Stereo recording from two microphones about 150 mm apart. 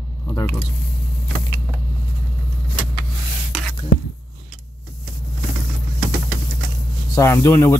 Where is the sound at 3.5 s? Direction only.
Centre (ahead or behind).